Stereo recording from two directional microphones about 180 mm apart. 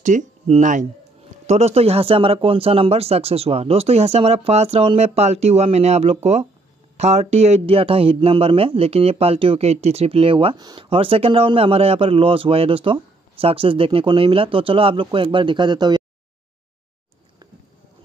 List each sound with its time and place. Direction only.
0.0 s speech: 45° right (ahead or behind); by 16.0 s 25° right (ahead or behind)